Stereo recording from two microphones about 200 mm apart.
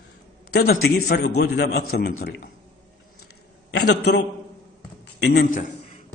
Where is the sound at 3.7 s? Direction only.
55° left (ahead or behind).